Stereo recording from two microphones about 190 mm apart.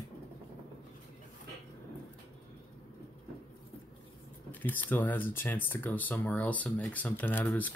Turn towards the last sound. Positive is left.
turn(degrees=10)  # may be behind; listen again after turning